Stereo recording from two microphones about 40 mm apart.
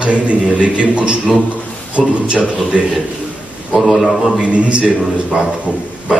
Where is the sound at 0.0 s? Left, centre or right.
Right.